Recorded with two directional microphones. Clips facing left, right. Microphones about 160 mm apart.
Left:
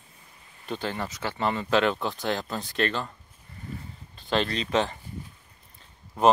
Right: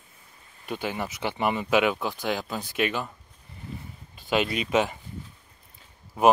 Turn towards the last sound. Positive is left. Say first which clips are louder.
# right 1 dB
turn(degrees=-5)  # may be behind; listen again after turning